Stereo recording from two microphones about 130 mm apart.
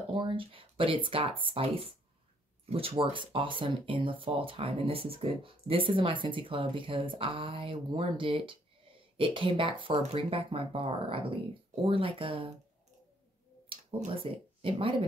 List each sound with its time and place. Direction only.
0.1 s speech: 40° right (ahead or behind)
13.9 s speech: 50° right (ahead or behind)